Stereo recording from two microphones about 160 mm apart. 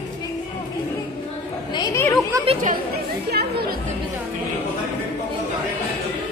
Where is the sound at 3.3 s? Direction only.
85° right.